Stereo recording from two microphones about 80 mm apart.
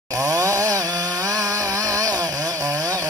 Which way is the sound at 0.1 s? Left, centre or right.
Right.